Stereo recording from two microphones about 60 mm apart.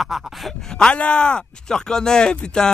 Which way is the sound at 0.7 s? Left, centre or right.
Centre.